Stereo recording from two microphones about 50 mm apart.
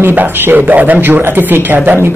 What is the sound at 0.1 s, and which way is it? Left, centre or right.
Speech, right.